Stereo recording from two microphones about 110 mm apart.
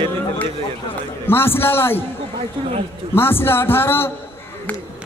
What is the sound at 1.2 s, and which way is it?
Speech, 20° left (ahead or behind).